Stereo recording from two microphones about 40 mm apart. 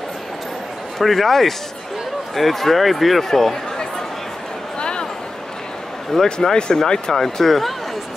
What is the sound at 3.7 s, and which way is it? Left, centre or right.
Chatter, centre.